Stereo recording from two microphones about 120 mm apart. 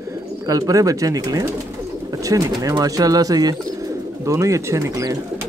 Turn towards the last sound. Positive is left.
turn(degrees=-25)  # may be behind; listen again after turning